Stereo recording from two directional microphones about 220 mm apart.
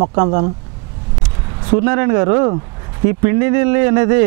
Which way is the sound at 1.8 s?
15° right (ahead or behind).